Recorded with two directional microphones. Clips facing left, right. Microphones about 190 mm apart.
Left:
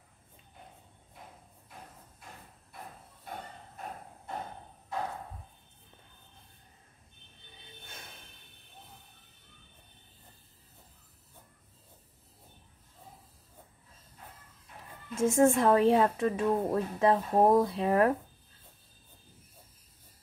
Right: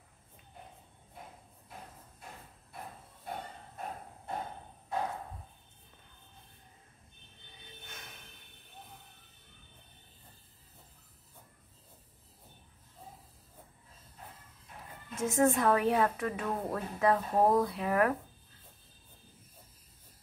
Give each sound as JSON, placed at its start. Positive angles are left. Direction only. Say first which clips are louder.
{"t": 15.1, "sound": "a woman's voice", "louder": "left 4 dB", "side_deg": 30}